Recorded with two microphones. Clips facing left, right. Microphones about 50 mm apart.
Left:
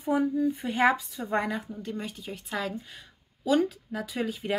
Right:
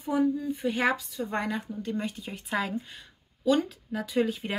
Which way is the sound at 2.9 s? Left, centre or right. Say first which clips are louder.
Even; centre.